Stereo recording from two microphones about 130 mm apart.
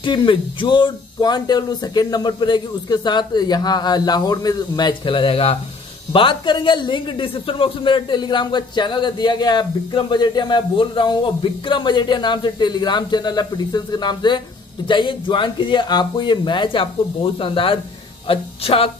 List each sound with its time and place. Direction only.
0.0 s a man's voice: 40° left (ahead or behind)